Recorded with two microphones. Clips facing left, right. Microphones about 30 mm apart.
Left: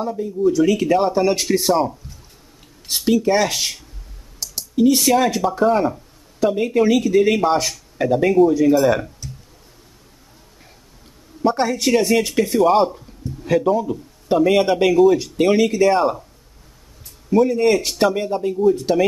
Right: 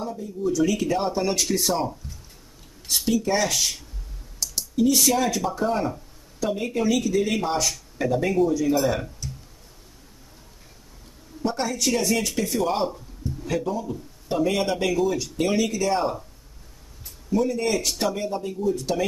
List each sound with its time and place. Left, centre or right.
0.0 s speech: left
3.1 s speech: left
4.4 s computer keyboard: centre
5.3 s speech: left
8.8 s speech: centre
11.4 s speech: left
17.3 s speech: left